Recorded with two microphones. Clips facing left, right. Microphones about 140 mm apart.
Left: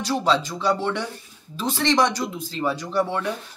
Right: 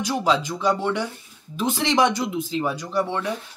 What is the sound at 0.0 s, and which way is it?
Speech, 15° right (ahead or behind).